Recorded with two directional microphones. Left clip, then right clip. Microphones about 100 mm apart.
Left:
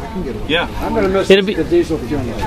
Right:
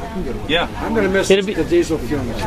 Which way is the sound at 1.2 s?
40° left (ahead or behind).